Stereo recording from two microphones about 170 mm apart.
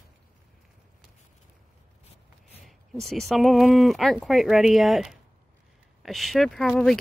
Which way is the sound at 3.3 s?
Centre (ahead or behind).